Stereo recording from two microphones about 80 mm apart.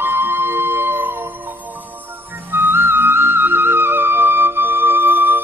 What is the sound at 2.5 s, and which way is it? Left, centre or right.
Music, right.